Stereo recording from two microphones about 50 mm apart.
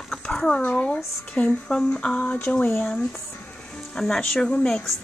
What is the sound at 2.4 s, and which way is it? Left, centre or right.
Speech, left.